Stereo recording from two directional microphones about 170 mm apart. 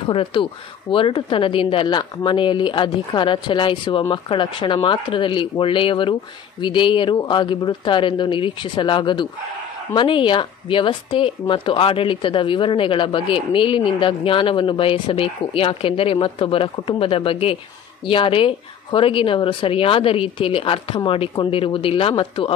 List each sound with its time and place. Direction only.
0.0 s speech: 30° left (ahead or behind)